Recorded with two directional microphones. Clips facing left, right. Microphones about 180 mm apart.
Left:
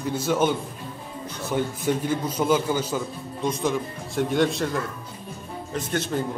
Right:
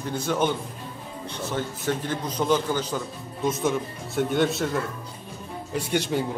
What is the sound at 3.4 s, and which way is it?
Speech, 5° right (ahead or behind).